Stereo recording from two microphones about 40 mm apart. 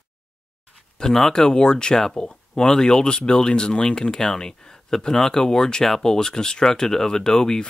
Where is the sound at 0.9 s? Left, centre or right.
Centre.